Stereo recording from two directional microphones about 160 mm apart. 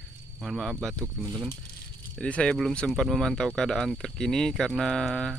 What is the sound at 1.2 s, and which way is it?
Speech, 20° right (ahead or behind).